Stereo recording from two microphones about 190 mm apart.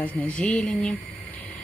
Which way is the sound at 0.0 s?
5° left (ahead or behind).